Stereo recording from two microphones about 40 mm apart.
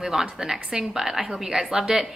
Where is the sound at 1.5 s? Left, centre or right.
Right.